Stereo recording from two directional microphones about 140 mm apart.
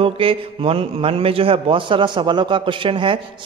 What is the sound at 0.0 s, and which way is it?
A man's voice, 40° right (ahead or behind).